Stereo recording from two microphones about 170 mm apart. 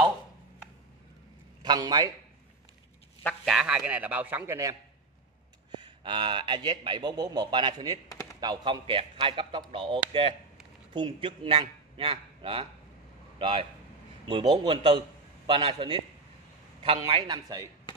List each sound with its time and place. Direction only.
1.6 s a man's voice: 25° right (ahead or behind)
3.4 s a man's voice: 5° right (ahead or behind)
5.8 s a man's voice: 30° right (ahead or behind)